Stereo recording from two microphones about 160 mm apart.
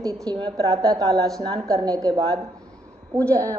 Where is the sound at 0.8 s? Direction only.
20° right (ahead or behind).